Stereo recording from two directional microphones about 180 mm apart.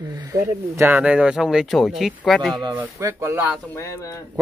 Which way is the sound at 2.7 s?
15° right (ahead or behind).